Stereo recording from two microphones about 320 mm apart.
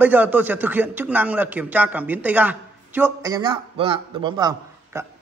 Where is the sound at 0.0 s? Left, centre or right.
Centre.